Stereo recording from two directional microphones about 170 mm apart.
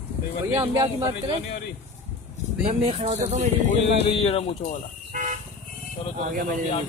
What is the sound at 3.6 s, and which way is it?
Speech, 35° left (ahead or behind).